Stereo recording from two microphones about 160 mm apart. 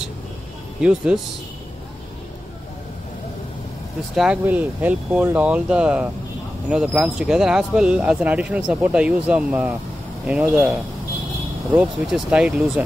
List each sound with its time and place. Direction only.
0.8 s speech: 5° right (ahead or behind)
4.1 s speech: 5° right (ahead or behind)